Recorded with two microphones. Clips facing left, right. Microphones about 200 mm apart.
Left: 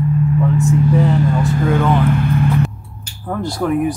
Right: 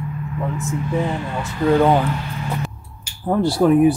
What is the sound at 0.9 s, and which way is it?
Speech, 40° left (ahead or behind).